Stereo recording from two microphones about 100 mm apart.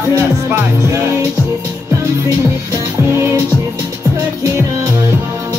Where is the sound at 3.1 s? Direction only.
25° right (ahead or behind).